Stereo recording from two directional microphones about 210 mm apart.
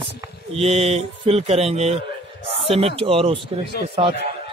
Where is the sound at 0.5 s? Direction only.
30° right (ahead or behind).